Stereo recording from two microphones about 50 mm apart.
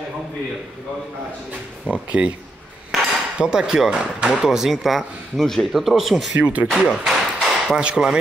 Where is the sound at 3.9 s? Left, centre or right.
Centre.